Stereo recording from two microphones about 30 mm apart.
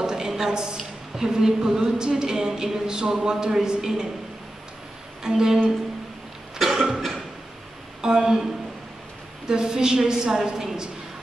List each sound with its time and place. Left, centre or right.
0.0 s a sound: centre
0.5 s a woman's voice: right
5.2 s a woman's voice: centre
6.6 s cough: centre
8.0 s a woman's voice: right
9.5 s a woman's voice: right